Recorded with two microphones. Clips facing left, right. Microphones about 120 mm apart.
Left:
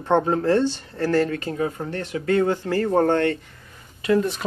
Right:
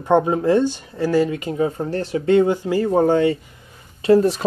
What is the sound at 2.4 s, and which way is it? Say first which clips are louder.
Speech: right 3 dB; 15° right (ahead or behind).